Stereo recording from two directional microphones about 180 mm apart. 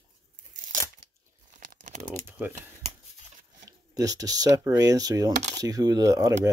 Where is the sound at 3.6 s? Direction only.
20° right (ahead or behind).